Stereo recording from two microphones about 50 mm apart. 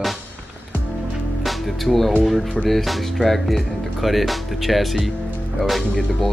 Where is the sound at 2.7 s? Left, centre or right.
Centre.